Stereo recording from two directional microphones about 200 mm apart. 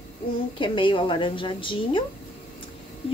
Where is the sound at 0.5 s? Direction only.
25° left (ahead or behind).